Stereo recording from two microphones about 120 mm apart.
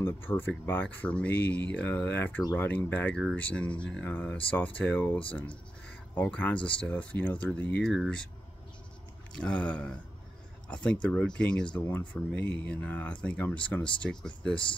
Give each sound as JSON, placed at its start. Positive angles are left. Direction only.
{"t": 0.0, "sound": "speech", "side_deg": 20}
{"t": 7.8, "sound": "speech", "side_deg": 0}
{"t": 9.3, "sound": "speech", "side_deg": 10}